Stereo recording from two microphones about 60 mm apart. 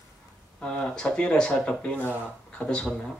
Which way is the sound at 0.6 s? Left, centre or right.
Centre.